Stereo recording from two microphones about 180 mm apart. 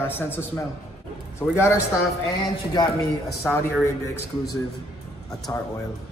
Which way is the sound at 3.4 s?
5° left (ahead or behind).